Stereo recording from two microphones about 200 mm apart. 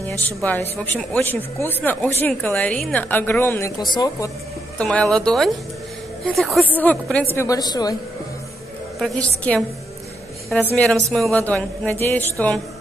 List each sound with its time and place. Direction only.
0.2 s a woman's voice: 10° left (ahead or behind)
4.7 s speech: 5° left (ahead or behind)
6.8 s a woman's voice: 5° left (ahead or behind)
7.3 s a woman's voice: 20° left (ahead or behind)
9.0 s a woman's voice: 5° left (ahead or behind)